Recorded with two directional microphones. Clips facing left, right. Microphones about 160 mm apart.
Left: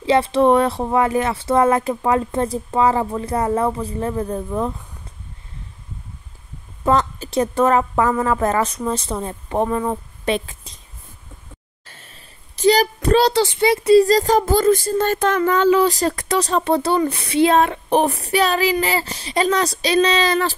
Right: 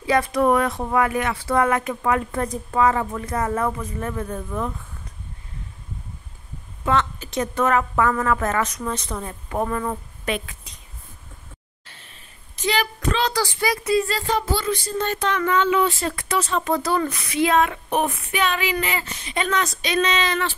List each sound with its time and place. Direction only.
0.0 s speech: 25° left (ahead or behind)
6.8 s a woman's voice: 40° left (ahead or behind)
11.9 s a sound: 40° left (ahead or behind)
13.4 s a woman's voice: 25° left (ahead or behind)